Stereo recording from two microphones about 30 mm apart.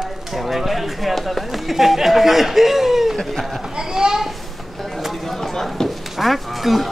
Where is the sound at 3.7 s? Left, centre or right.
Right.